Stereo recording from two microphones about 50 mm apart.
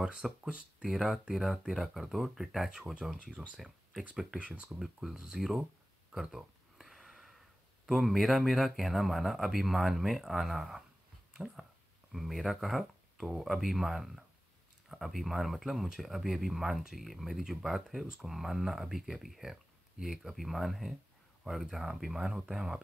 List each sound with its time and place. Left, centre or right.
0.0 s speech: centre
0.8 s speech: centre
3.3 s speech: right
4.7 s speech: centre
6.1 s a sound: centre
7.8 s speech: centre